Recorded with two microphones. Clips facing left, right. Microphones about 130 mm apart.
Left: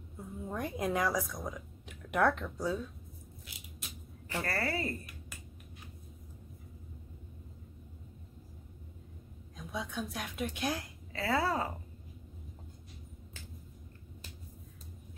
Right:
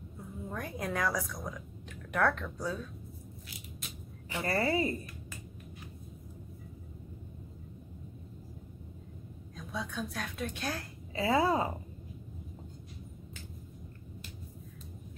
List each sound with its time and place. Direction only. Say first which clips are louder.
0.5 s a woman's voice: left 3 dB; 20° left (ahead or behind)
4.3 s a woman's voice: right 4 dB; 15° right (ahead or behind)
9.6 s a woman's voice: even; 20° left (ahead or behind)
11.1 s a woman's voice: right 4 dB; 15° right (ahead or behind)